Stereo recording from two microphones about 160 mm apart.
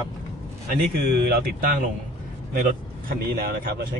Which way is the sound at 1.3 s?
70° right (ahead or behind).